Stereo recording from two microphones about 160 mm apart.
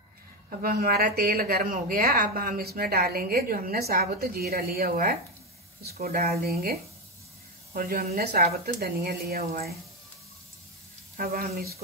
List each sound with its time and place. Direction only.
0.5 s speech: 70° right (ahead or behind)
11.1 s speech: 65° right (ahead or behind)